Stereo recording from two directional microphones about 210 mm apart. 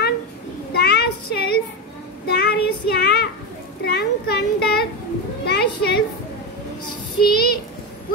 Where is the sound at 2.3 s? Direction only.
50° left (ahead or behind).